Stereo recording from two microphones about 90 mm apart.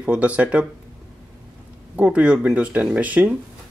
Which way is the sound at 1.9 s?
10° right (ahead or behind).